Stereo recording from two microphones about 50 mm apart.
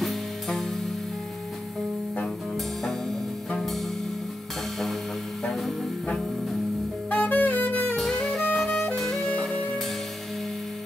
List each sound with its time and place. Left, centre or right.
0.5 s music: centre
2.5 s music: centre
5.5 s music: centre
7.1 s saxophone: left
7.9 s music: centre